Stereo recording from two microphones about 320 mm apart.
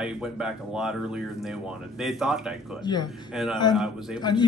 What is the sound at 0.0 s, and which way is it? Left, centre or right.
Speech, centre.